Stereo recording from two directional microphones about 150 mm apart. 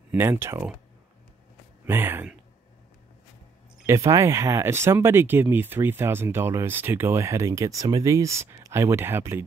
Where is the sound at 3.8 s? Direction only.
20° right (ahead or behind).